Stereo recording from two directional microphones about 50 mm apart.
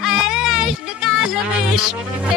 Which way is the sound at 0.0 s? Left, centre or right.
Centre.